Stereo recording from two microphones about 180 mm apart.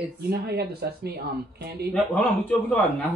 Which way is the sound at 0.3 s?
65° right (ahead or behind).